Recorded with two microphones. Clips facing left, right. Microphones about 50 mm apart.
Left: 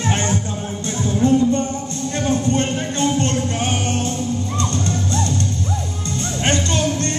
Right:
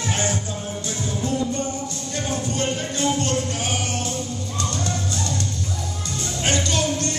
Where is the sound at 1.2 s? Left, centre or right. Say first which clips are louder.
Left 9 dB; left.